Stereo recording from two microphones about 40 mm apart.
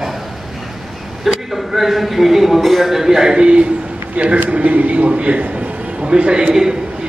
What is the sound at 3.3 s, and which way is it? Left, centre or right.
A man's voice, right.